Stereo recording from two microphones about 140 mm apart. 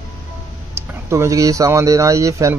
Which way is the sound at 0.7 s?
20° right (ahead or behind).